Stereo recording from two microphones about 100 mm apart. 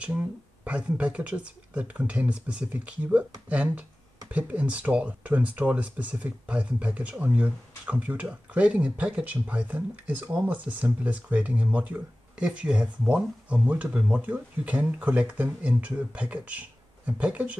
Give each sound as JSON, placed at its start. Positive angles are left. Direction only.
{"t": 0.7, "sound": "speech", "side_deg": -10}